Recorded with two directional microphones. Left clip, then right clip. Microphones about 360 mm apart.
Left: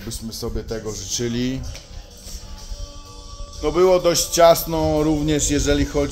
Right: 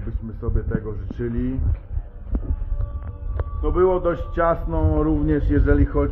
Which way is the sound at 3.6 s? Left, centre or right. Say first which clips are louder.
Left 4 dB; centre.